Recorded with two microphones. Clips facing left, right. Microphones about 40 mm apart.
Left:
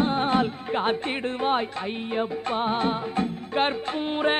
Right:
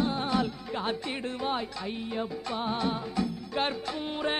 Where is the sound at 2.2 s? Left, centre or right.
Left.